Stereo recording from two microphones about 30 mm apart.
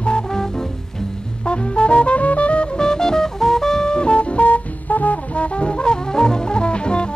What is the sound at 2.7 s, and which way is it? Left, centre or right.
Music, left.